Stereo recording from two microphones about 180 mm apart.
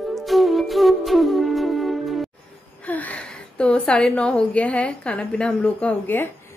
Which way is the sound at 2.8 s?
10° left (ahead or behind).